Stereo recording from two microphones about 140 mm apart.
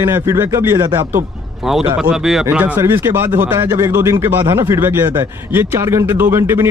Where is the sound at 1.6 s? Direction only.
Centre (ahead or behind).